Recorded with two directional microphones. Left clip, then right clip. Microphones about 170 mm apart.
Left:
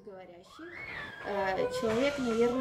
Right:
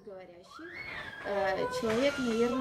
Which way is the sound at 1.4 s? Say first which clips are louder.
Left 1 dB; 10° left (ahead or behind).